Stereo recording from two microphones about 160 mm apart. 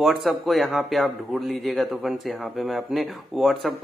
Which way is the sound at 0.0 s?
Centre (ahead or behind).